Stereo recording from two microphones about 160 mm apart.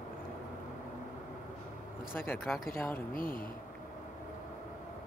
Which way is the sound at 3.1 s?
65° left (ahead or behind).